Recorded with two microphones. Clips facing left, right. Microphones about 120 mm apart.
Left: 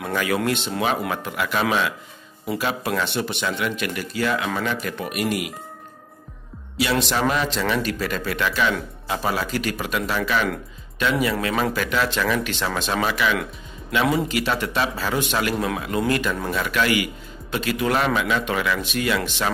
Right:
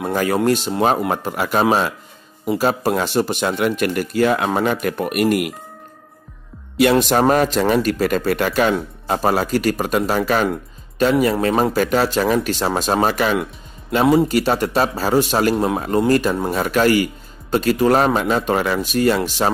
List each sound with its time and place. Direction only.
0.0 s speech: 35° right (ahead or behind); by 5.5 s 55° right (ahead or behind)
6.8 s speech: 50° right (ahead or behind)